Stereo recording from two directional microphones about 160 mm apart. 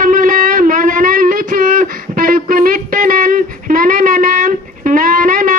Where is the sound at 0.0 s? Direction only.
55° right (ahead or behind).